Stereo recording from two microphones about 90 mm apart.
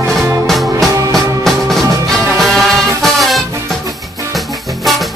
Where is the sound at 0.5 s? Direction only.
Centre (ahead or behind).